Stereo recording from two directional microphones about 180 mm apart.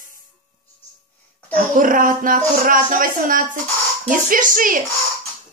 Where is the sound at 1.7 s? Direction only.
50° right (ahead or behind).